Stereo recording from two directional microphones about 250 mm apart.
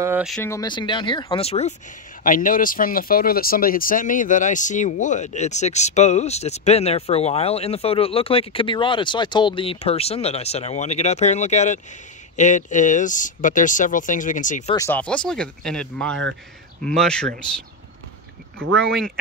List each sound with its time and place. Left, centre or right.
0.0 s speech: centre
0.4 s speech: centre; by 14.8 s left
14.8 s speech: centre
18.6 s speech: right